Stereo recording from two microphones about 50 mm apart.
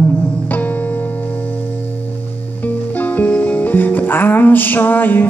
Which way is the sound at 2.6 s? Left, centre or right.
Left.